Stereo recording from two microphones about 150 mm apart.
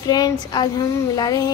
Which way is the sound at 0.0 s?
25° left (ahead or behind).